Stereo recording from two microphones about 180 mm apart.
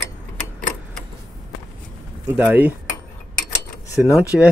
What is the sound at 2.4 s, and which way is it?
Speech, 10° right (ahead or behind).